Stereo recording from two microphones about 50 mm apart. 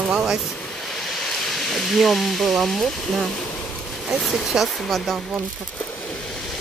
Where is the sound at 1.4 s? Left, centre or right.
Centre.